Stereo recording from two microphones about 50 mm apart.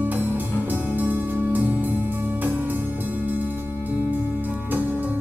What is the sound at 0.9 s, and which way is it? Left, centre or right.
Music, right.